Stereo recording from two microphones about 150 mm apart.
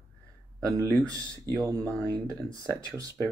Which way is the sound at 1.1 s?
25° right (ahead or behind).